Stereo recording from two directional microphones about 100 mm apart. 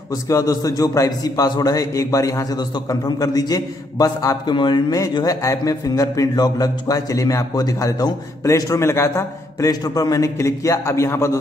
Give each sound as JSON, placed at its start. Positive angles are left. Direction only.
{"t": 0.1, "sound": "speech", "side_deg": 35}
{"t": 4.5, "sound": "speech", "side_deg": 50}